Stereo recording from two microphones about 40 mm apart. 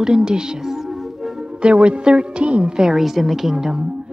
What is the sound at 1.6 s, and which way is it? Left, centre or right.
Speech, right.